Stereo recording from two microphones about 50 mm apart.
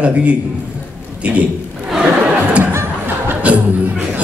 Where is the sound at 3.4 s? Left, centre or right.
Right.